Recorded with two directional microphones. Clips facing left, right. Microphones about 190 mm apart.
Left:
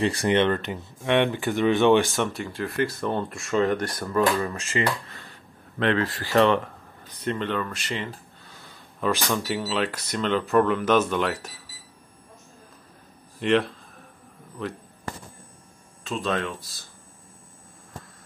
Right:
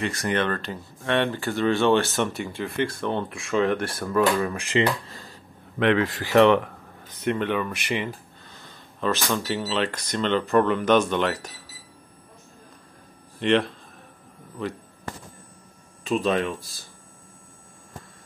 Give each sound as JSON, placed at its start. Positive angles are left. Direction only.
{"t": 0.0, "sound": "speech", "side_deg": 30}
{"t": 2.3, "sound": "speech", "side_deg": 0}
{"t": 5.8, "sound": "speech", "side_deg": -15}
{"t": 8.5, "sound": "speech", "side_deg": 10}
{"t": 13.4, "sound": "speech", "side_deg": 0}
{"t": 16.1, "sound": "speech", "side_deg": -10}